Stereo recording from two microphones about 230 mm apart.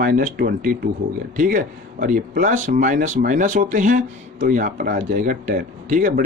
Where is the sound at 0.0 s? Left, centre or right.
Right.